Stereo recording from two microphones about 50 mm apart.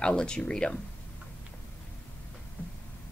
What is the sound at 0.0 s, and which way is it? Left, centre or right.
Speech, centre.